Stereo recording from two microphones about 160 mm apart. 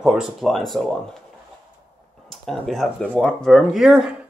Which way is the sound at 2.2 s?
Centre (ahead or behind).